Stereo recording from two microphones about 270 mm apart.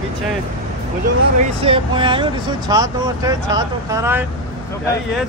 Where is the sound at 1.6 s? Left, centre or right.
Centre.